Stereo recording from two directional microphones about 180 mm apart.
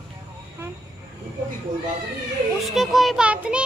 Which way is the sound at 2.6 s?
Centre (ahead or behind).